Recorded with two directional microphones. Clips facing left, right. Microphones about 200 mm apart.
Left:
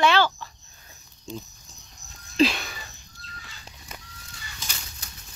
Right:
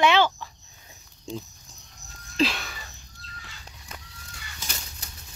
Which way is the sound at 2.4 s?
Centre (ahead or behind).